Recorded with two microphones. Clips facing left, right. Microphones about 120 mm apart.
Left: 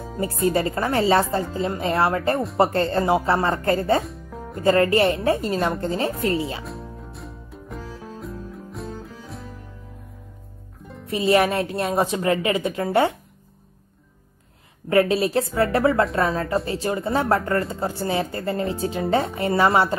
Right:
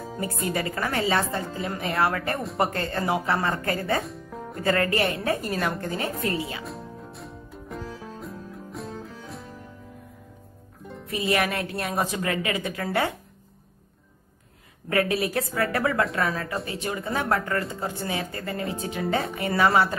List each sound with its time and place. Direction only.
0.2 s a woman's voice: 30° left (ahead or behind)
4.0 s music: centre (ahead or behind)
4.6 s a woman's voice: 30° left (ahead or behind)
6.6 s music: centre (ahead or behind)
11.1 s a woman's voice: 30° left (ahead or behind)
14.9 s a woman's voice: 25° left (ahead or behind)